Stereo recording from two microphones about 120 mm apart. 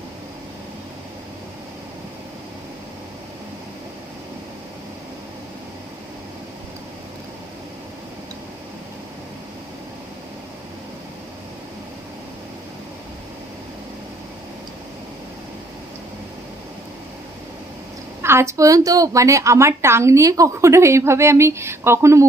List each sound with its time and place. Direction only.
18.2 s a woman's voice: 20° right (ahead or behind)